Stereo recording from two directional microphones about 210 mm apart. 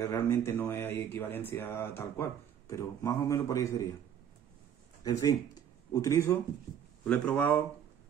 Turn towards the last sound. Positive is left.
turn(degrees=10)  # may be behind; listen again after turning